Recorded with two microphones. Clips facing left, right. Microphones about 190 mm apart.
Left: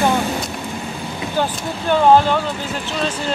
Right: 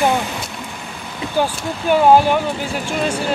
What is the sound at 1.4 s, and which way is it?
Speech, 10° right (ahead or behind).